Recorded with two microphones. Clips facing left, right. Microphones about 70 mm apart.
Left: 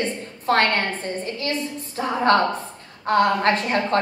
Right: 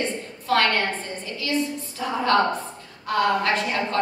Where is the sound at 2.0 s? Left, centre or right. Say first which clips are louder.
Left 2 dB; left.